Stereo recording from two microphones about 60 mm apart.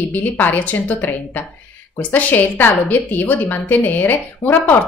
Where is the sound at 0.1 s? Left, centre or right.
Left.